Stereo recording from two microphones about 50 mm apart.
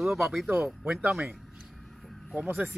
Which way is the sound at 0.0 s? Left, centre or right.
Centre.